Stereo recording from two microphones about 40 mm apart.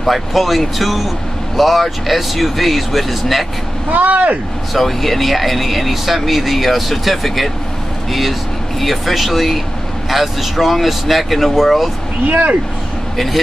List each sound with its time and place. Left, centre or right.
0.0 s speech: centre
3.9 s speech: right
4.7 s speech: centre
12.3 s speech: right